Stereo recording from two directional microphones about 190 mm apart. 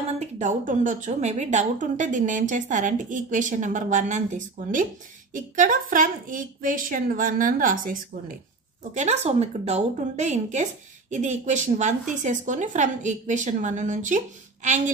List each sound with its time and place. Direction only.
0.4 s a woman's voice: 40° right (ahead or behind)